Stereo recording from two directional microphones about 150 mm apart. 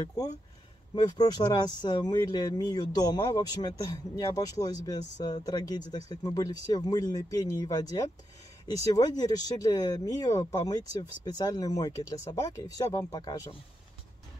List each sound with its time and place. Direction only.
0.9 s speech: 25° left (ahead or behind)